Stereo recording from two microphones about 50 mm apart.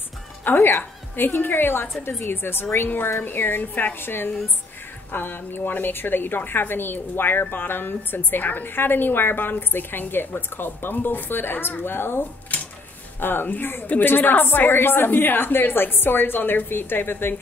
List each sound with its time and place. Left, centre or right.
0.5 s a woman's voice: left